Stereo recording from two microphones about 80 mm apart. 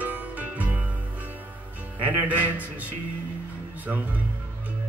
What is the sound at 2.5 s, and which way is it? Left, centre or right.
Music, centre.